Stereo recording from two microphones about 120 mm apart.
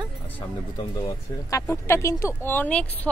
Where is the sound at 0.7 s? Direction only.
35° left (ahead or behind).